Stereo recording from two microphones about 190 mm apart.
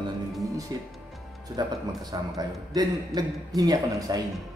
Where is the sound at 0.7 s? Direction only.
20° right (ahead or behind).